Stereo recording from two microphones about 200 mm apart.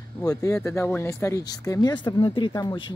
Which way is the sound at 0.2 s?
15° left (ahead or behind).